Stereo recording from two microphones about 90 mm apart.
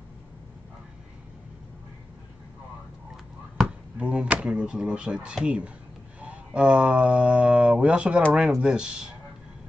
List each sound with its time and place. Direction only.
4.0 s speech: 10° right (ahead or behind)